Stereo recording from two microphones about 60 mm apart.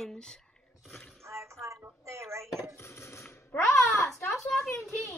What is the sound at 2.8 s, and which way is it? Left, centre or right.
Coin, left.